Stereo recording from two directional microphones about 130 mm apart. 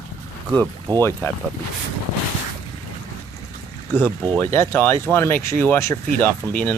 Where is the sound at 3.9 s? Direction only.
15° left (ahead or behind).